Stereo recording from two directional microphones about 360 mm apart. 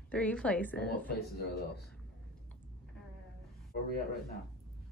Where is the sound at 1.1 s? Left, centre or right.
Left.